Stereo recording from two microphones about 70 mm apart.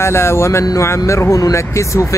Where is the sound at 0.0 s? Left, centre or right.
Left.